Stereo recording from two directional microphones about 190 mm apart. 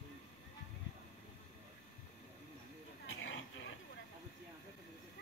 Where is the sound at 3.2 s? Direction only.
75° left (ahead or behind).